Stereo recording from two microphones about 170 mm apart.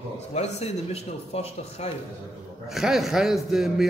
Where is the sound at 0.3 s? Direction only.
40° left (ahead or behind).